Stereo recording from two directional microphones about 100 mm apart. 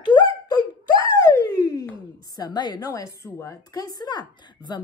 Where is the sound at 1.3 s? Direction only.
35° left (ahead or behind).